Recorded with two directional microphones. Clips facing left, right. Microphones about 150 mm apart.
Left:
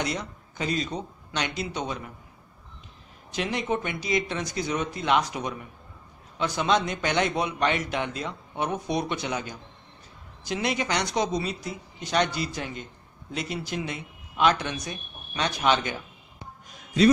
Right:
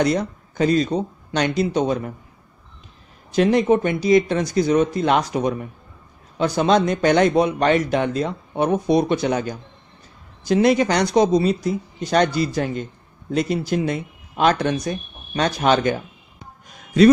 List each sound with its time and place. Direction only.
0.0 s speech: 45° right (ahead or behind)
3.3 s a man's voice: 40° right (ahead or behind)